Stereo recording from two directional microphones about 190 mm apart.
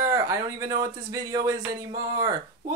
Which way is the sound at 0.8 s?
20° right (ahead or behind).